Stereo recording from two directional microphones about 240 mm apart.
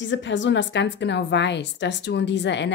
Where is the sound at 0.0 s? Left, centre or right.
Left.